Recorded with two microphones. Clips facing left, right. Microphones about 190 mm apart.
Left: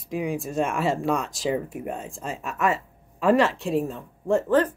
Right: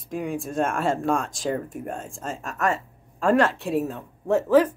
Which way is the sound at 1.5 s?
45° right (ahead or behind).